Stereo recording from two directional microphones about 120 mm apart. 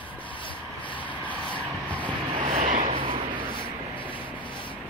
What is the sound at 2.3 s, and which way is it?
Vehicle, 85° right.